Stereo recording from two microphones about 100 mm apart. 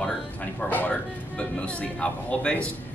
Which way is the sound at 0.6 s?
15° left (ahead or behind).